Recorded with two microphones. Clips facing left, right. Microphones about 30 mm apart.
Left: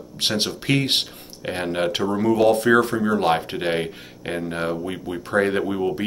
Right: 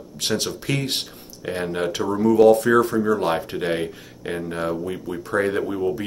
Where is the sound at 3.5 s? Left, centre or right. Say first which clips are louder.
Even; left.